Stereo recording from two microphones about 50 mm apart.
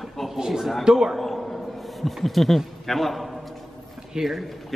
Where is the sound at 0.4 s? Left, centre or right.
Centre.